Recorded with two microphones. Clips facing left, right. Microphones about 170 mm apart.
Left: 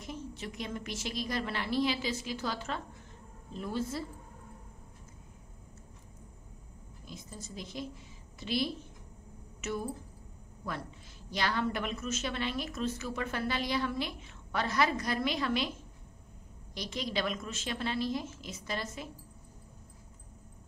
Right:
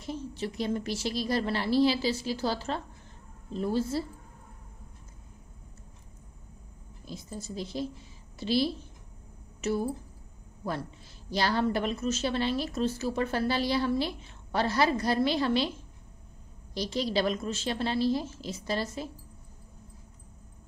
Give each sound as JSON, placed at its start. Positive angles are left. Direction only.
{"t": 0.0, "sound": "a woman's voice", "side_deg": -30}
{"t": 7.1, "sound": "a woman's voice", "side_deg": -35}
{"t": 11.2, "sound": "a woman's voice", "side_deg": -35}
{"t": 16.7, "sound": "a woman's voice", "side_deg": -35}